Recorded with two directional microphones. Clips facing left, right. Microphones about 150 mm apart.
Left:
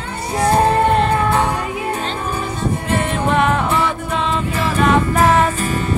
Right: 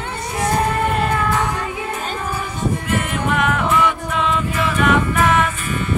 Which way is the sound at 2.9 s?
30° left (ahead or behind).